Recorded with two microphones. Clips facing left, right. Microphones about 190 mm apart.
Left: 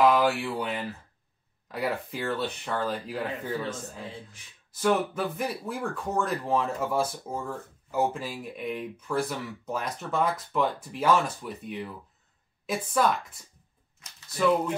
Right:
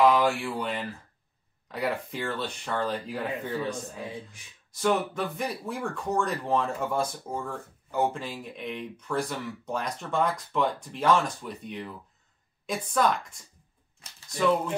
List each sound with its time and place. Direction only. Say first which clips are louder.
0.0 s speech: even; centre (ahead or behind)
4.7 s speech: left 1 dB; centre (ahead or behind)